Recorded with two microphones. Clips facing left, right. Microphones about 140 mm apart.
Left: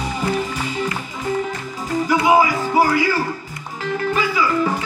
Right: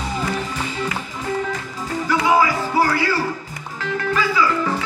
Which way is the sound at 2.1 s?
15° left (ahead or behind).